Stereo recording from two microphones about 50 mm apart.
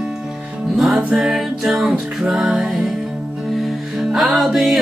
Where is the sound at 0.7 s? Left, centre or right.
Centre.